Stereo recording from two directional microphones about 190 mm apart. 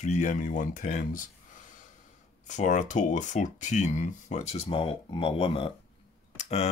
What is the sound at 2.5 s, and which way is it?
Speech, 40° left (ahead or behind).